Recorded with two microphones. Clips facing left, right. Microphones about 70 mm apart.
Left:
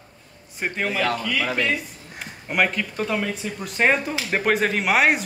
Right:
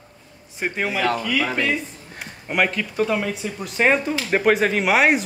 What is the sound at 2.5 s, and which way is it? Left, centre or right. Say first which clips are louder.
Speech: right 1 dB; centre.